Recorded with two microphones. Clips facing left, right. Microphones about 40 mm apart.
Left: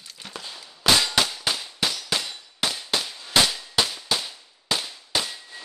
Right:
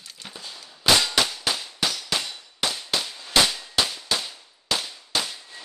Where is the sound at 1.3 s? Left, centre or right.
Centre.